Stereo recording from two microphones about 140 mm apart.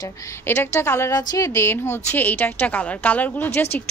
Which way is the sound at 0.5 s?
20° left (ahead or behind).